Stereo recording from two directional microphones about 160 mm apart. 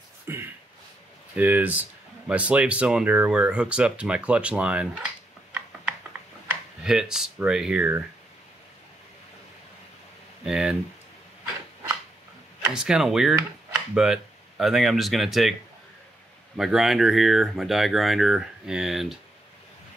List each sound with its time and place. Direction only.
0.3 s a sound: 15° right (ahead or behind)
1.3 s speech: 10° right (ahead or behind)
6.8 s speech: 5° right (ahead or behind)
10.4 s speech: 5° right (ahead or behind)
12.7 s speech: 5° right (ahead or behind)
16.5 s speech: centre (ahead or behind)